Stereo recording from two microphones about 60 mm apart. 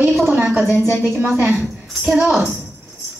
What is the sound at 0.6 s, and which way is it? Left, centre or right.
Speech, centre.